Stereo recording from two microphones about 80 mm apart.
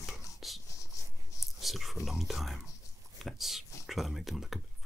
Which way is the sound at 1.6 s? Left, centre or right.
Centre.